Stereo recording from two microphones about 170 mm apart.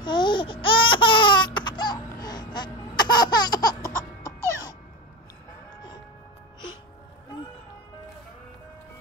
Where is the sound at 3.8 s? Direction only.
15° right (ahead or behind).